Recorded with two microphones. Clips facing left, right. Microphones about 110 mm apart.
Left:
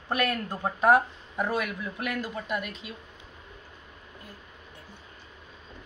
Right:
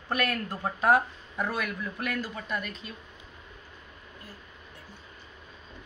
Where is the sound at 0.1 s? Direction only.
15° left (ahead or behind).